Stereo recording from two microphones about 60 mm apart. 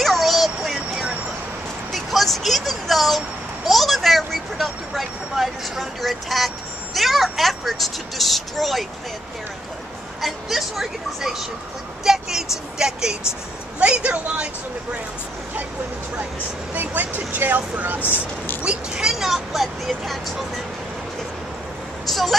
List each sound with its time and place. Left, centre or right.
0.0 s a sound: centre
3.6 s vehicle: centre
10.2 s speech: centre
16.7 s speech: right
18.0 s speech: left
18.6 s speech: centre
22.0 s vehicle: centre